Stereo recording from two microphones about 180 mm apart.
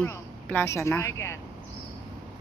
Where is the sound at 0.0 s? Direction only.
10° left (ahead or behind).